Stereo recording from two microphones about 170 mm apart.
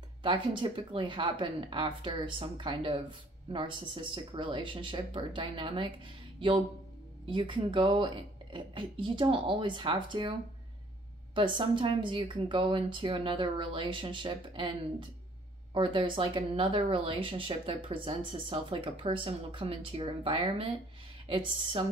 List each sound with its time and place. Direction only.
0.2 s speech: 30° right (ahead or behind)
7.2 s speech: 30° right (ahead or behind)
11.3 s speech: 30° right (ahead or behind)